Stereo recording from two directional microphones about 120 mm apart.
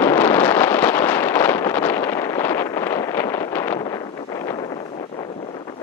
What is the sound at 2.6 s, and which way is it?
Wind noise, 25° left (ahead or behind).